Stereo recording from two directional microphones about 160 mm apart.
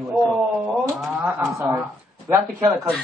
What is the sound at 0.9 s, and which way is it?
Speech, centre (ahead or behind).